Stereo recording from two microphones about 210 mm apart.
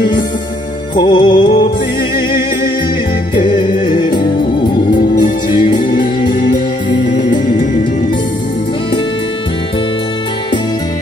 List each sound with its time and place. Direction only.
0.9 s music: 20° left (ahead or behind)
3.3 s music: 20° left (ahead or behind)